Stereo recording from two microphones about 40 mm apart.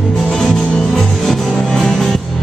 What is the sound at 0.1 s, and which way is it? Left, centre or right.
Music, centre.